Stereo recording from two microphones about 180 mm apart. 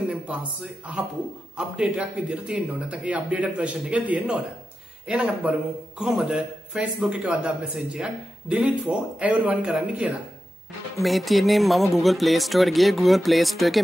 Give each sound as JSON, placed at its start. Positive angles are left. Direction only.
{"t": 0.1, "sound": "a man's voice", "side_deg": -5}